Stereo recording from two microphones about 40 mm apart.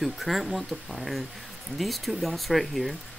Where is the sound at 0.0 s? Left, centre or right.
Centre.